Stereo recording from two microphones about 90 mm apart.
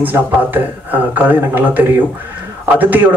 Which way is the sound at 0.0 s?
20° right (ahead or behind).